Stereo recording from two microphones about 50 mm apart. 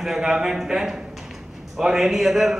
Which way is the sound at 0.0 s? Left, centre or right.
Centre.